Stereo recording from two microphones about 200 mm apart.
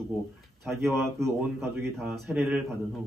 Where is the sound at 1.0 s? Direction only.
15° right (ahead or behind).